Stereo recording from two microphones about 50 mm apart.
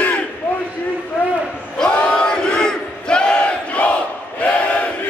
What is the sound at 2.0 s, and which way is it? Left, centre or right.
Battle cry, centre.